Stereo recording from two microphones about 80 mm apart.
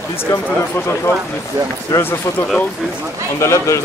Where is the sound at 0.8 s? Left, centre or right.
Left.